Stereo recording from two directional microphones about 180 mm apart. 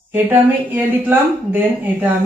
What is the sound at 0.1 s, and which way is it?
Speech, 10° right (ahead or behind).